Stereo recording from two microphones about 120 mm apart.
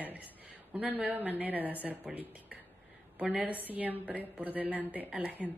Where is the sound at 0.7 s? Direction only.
15° right (ahead or behind).